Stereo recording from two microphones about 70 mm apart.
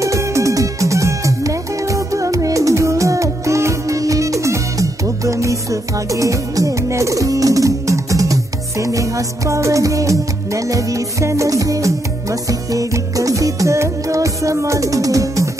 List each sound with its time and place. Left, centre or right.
0.0 s music: right